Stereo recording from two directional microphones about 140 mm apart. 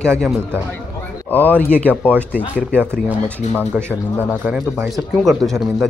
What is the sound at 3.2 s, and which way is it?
Speech, 10° left (ahead or behind).